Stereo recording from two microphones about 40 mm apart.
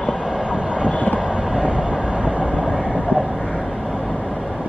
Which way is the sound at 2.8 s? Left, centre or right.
Left.